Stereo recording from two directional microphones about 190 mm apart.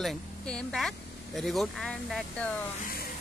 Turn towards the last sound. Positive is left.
turn(degrees=50)  # may be behind; listen again after turning